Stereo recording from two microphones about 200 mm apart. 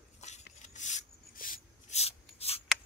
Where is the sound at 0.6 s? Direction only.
35° left (ahead or behind).